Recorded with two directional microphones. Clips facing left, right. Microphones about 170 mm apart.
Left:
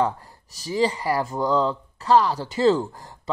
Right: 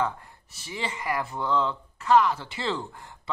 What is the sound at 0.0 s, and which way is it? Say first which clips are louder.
Speech: left 5 dB; 35° left (ahead or behind).